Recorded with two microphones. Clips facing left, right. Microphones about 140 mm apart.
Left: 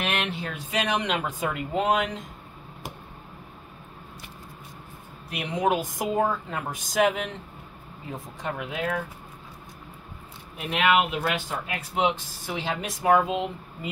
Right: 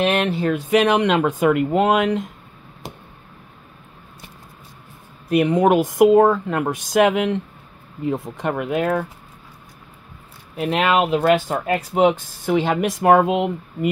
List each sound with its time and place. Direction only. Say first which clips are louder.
0.0 s a sound: right 10 dB; 35° right (ahead or behind)
0.4 s speech: right 12 dB; 60° right (ahead or behind)
5.3 s speech: right 10 dB; 50° right (ahead or behind)
10.7 s speech: right 5 dB; 40° right (ahead or behind); by 13.8 s 65° right (ahead or behind)